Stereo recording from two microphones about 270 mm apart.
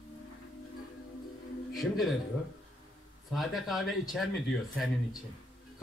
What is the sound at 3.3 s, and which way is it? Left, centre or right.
Speech, centre.